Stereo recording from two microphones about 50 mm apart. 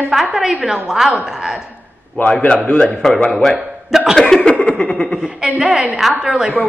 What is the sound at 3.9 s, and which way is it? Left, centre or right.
Speech, centre.